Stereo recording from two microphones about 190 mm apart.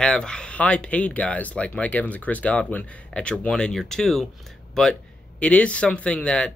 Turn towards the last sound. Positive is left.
turn(degrees=5)  # may be behind; listen again after turning